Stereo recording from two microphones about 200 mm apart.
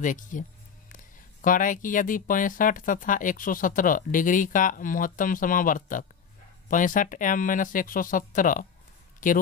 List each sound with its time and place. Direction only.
0.0 s speech: 40° left (ahead or behind)